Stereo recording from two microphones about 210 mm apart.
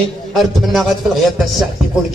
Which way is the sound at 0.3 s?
Centre (ahead or behind).